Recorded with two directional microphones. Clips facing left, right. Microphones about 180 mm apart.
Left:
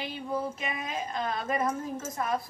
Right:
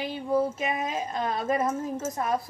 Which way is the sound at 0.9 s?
35° right (ahead or behind).